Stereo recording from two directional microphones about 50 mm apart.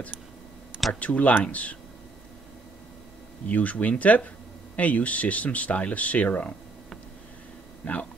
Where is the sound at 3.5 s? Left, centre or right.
Left.